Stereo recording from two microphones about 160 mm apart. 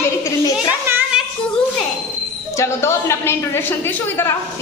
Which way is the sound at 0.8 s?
15° right (ahead or behind).